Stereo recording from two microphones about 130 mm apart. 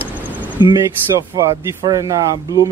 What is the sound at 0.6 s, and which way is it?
Speech, 25° right (ahead or behind).